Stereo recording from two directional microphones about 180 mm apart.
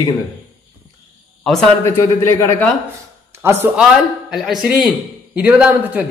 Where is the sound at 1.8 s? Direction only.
15° left (ahead or behind).